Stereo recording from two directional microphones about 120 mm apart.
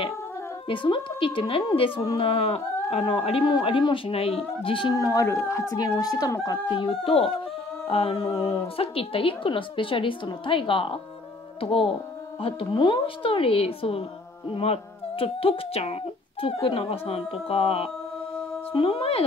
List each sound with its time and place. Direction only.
0.7 s a woman's voice: 45° left (ahead or behind)
4.9 s speech: 25° left (ahead or behind)
6.7 s a woman's voice: 50° left (ahead or behind)